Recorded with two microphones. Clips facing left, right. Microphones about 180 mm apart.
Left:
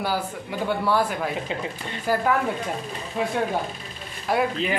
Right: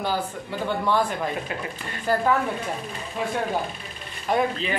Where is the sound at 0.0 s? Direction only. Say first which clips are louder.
Even; 10° left (ahead or behind).